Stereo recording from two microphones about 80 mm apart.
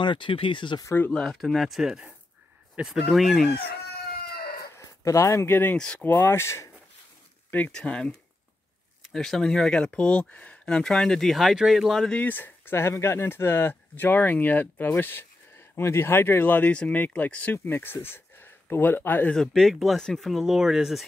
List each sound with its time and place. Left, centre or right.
0.0 s speech: left
1.1 s speech: centre
4.7 s speech: left
7.7 s speech: centre
9.1 s speech: centre
12.1 s speech: left
19.3 s speech: centre